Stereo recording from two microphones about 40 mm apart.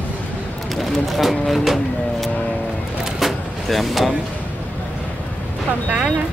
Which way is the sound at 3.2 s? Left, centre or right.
Centre.